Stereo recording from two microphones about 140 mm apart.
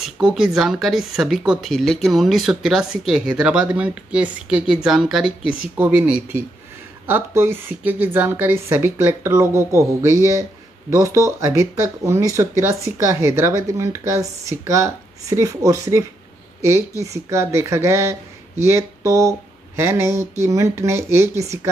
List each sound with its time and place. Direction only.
0.0 s a woman's voice: 5° right (ahead or behind); by 21.4 s 20° right (ahead or behind)